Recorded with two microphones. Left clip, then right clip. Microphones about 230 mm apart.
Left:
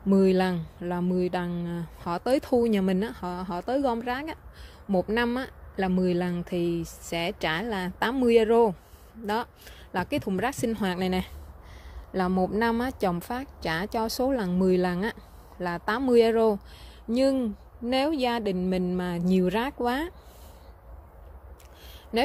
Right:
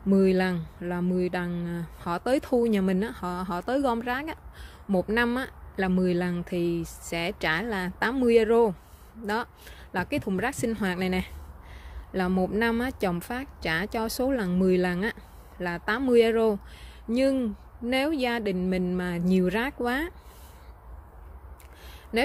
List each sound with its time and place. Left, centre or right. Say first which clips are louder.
0.1 s speech: left 1 dB; centre
22.1 s speech: even; centre